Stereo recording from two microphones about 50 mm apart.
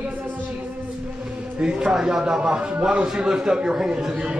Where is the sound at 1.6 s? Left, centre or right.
Centre.